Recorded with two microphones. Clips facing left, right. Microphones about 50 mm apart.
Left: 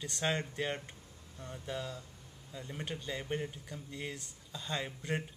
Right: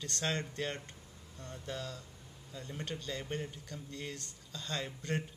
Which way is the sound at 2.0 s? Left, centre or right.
Centre.